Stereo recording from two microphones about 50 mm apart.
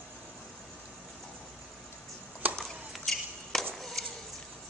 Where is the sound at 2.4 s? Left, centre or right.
Right.